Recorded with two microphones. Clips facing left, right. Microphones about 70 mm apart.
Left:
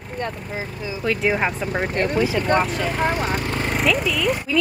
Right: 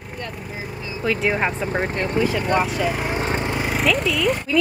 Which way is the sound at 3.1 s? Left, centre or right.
Right.